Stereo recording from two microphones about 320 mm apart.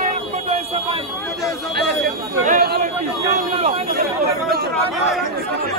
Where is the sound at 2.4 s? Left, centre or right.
Right.